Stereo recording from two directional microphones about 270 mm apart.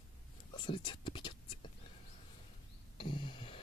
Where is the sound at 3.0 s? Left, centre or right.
Centre.